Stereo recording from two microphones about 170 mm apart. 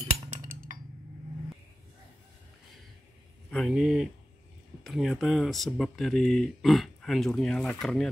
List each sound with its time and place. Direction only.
0.3 s chink: 50° right (ahead or behind)
3.4 s speech: centre (ahead or behind)